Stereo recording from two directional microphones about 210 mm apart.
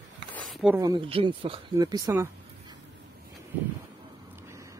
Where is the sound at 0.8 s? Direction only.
20° right (ahead or behind).